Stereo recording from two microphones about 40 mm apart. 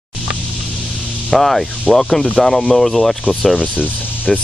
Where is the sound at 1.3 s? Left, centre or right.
Centre.